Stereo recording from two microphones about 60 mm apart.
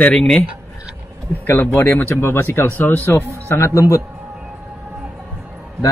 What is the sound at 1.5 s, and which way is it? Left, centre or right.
Speech, left.